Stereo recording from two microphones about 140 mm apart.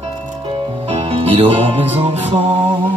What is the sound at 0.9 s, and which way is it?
Music, 45° right (ahead or behind).